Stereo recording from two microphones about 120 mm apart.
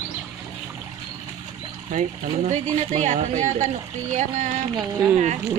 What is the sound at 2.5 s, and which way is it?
A woman's voice, 85° right.